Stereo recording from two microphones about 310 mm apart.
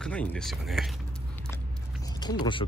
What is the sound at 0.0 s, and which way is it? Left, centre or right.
Speech, centre.